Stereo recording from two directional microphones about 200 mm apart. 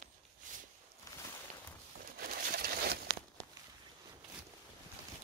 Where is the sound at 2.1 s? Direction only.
50° right (ahead or behind).